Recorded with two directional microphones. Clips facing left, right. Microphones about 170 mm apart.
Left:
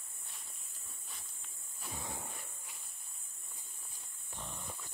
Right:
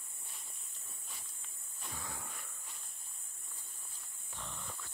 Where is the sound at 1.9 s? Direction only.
25° left (ahead or behind).